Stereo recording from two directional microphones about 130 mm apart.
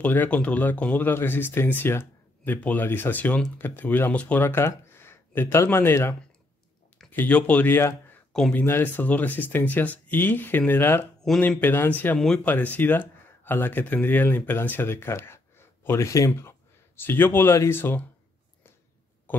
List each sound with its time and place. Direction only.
0.0 s speech: 10° left (ahead or behind)
8.1 s a sound: 5° left (ahead or behind)
8.6 s speech: 15° left (ahead or behind)